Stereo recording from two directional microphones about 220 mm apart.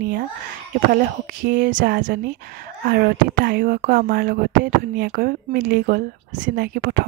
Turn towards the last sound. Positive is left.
turn(degrees=-40)  # may be behind; listen again after turning